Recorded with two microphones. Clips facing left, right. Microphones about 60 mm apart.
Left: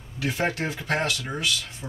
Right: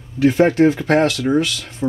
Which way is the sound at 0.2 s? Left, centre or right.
Right.